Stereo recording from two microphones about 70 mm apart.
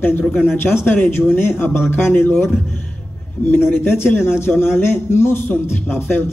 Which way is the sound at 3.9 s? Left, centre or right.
Left.